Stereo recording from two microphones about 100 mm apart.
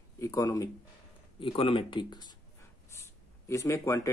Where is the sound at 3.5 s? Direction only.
30° left (ahead or behind).